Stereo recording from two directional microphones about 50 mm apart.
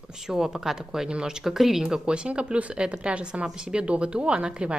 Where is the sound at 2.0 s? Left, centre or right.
Right.